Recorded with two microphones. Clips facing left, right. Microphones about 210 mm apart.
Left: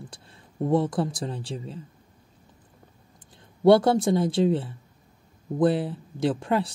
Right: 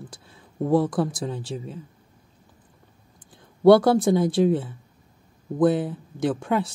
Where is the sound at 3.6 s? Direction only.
25° left (ahead or behind).